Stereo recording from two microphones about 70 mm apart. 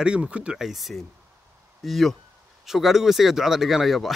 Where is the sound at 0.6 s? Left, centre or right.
Centre.